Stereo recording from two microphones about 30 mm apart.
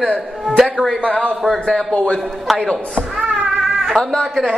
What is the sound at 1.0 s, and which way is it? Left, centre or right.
Speech, left.